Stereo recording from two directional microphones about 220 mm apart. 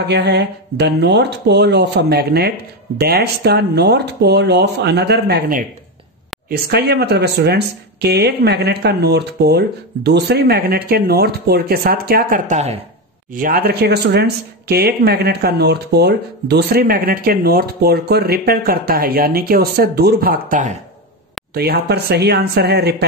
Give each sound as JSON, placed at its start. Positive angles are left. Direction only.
{"t": 0.0, "sound": "speech", "side_deg": -50}
{"t": 13.3, "sound": "speech", "side_deg": -40}